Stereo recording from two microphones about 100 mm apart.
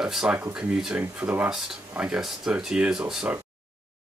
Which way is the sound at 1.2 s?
20° right (ahead or behind).